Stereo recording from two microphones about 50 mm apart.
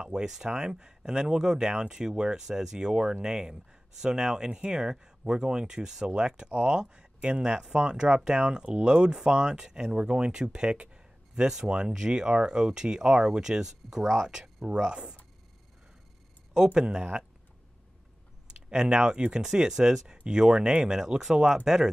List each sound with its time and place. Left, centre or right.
0.0 s speech: centre
16.5 s speech: centre
18.7 s speech: centre